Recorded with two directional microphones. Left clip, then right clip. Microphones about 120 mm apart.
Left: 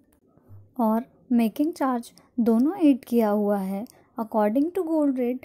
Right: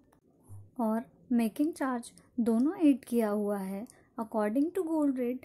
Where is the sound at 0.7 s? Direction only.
30° left (ahead or behind).